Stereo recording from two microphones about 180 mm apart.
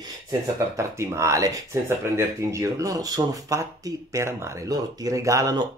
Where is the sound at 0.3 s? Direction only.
15° right (ahead or behind).